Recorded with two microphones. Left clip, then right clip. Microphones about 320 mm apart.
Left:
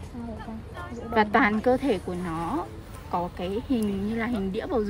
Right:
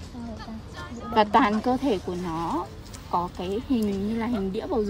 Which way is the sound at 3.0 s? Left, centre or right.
Centre.